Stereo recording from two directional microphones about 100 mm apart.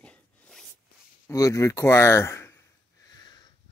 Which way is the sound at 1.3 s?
30° left (ahead or behind).